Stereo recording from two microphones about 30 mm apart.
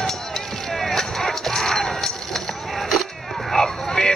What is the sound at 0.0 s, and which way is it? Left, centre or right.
Music, centre.